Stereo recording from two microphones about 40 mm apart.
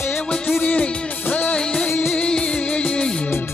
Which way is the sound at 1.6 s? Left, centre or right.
Left.